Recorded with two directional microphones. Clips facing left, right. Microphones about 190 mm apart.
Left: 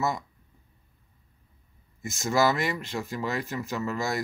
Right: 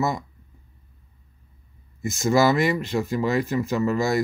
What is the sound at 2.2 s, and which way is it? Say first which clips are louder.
Speech: right 5 dB; 10° right (ahead or behind).